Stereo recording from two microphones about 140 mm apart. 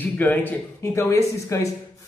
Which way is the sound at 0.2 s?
10° left (ahead or behind).